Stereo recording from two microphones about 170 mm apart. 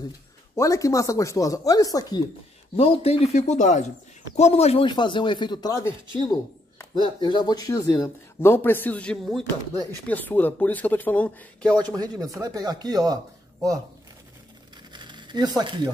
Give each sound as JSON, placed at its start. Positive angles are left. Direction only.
{"t": 0.6, "sound": "speech", "side_deg": 20}
{"t": 2.7, "sound": "speech", "side_deg": 35}
{"t": 4.8, "sound": "speech", "side_deg": 25}
{"t": 12.0, "sound": "speech", "side_deg": -20}
{"t": 14.9, "sound": "a sound", "side_deg": -25}